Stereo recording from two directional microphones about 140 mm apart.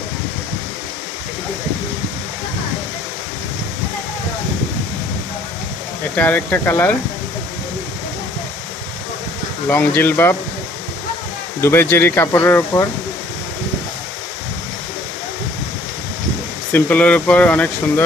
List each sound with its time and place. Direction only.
6.1 s speech: 10° left (ahead or behind)
9.7 s speech: 15° left (ahead or behind)
11.6 s speech: 15° left (ahead or behind)
16.7 s speech: 10° left (ahead or behind)